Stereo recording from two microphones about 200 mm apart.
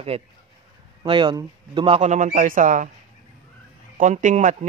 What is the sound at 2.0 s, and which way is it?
Speech, 40° right (ahead or behind).